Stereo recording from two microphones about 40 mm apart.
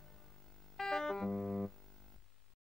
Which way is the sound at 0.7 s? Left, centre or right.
Centre.